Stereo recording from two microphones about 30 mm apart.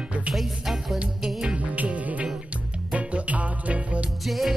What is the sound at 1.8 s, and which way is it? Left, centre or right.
Music, right.